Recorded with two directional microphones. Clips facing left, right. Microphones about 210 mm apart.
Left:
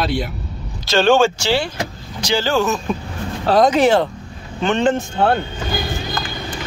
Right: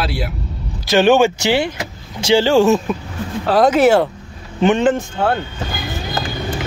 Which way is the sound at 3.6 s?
5° right (ahead or behind).